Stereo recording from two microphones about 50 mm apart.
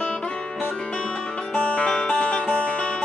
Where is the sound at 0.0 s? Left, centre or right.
Centre.